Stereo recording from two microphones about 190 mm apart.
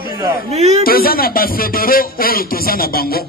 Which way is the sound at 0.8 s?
50° left (ahead or behind).